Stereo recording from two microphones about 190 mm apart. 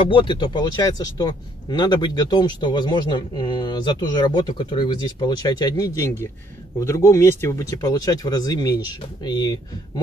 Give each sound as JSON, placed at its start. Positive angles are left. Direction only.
{"t": 0.1, "sound": "speech", "side_deg": 25}